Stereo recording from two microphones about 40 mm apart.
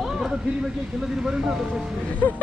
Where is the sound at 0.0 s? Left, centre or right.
Centre.